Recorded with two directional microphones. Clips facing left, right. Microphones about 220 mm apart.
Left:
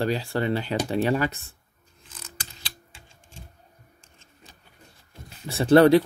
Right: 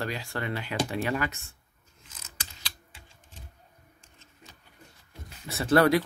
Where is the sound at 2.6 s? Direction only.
25° left (ahead or behind).